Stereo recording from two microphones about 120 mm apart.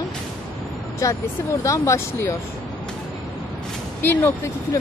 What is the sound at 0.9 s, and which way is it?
Speech, 25° left (ahead or behind).